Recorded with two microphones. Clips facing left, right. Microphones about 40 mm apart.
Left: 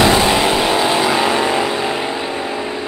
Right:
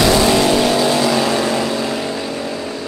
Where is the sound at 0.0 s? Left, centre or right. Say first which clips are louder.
Even; left.